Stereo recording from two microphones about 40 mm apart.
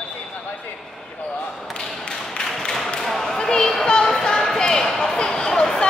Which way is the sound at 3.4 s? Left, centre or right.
Centre.